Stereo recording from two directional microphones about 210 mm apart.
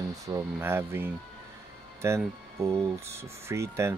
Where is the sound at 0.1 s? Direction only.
15° right (ahead or behind).